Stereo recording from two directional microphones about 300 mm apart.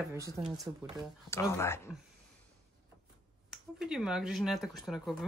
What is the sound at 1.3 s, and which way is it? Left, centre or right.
Speech, centre.